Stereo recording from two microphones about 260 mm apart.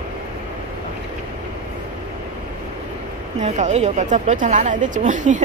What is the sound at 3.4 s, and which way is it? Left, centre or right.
A woman's voice, right.